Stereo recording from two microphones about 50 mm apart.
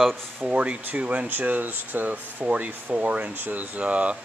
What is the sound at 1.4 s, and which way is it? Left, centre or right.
Speech, right.